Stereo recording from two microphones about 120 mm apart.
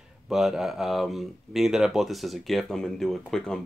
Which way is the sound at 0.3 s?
Centre (ahead or behind).